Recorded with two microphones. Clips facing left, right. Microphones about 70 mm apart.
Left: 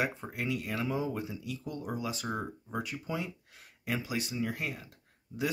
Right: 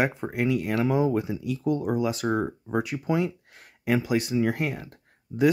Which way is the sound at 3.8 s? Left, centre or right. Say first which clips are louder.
Right 10 dB; right.